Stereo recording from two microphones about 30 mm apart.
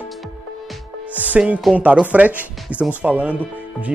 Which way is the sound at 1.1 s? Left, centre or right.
Right.